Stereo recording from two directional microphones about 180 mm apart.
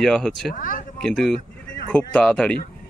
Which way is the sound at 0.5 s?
50° left (ahead or behind).